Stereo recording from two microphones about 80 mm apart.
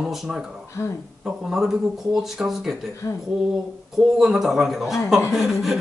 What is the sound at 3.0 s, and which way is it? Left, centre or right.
Speech, left.